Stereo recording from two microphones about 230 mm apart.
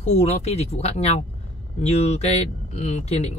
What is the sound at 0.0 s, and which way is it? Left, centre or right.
Speech, left.